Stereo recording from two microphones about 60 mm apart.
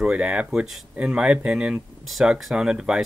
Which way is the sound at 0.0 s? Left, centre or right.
Centre.